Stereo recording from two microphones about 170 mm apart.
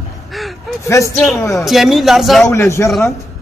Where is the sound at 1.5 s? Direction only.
Centre (ahead or behind).